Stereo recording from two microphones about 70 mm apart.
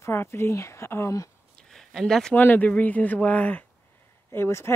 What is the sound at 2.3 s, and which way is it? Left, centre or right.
Speech, left.